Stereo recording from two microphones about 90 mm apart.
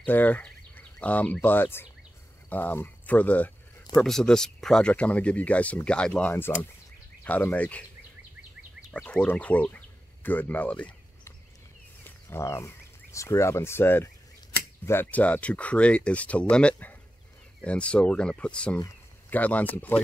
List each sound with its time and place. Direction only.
0.0 s speech: 20° left (ahead or behind)
4.0 s speech: 5° left (ahead or behind)
6.3 s speech: 25° left (ahead or behind)
8.9 s speech: 10° left (ahead or behind)
12.0 s speech: 30° left (ahead or behind)